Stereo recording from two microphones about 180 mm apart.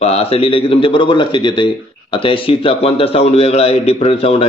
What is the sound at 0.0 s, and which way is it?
A man's voice, 35° left (ahead or behind).